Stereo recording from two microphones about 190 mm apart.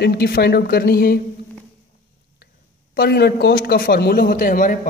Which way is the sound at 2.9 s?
55° left (ahead or behind).